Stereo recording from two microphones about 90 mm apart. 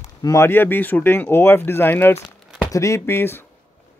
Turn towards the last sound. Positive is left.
turn(degrees=25)  # may be behind; listen again after turning